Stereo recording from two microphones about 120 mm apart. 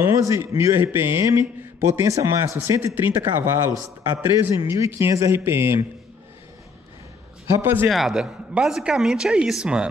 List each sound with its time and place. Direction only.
0.0 s speech: 20° right (ahead or behind)
7.5 s speech: 20° right (ahead or behind)
7.9 s speech: centre (ahead or behind)